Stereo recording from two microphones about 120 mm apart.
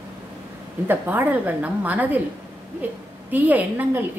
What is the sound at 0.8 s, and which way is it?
A woman's voice, 15° right (ahead or behind).